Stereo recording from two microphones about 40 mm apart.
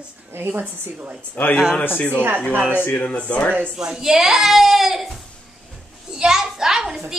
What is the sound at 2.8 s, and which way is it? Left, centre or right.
Speech, left.